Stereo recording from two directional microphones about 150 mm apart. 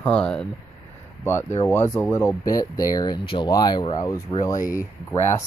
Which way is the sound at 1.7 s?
15° left (ahead or behind).